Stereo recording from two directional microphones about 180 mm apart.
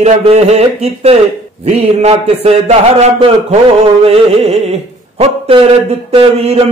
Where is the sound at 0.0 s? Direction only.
40° right (ahead or behind).